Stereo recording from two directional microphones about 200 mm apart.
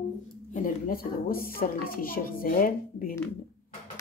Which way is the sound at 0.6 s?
45° left (ahead or behind).